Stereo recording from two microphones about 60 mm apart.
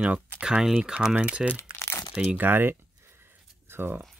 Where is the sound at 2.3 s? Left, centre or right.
Right.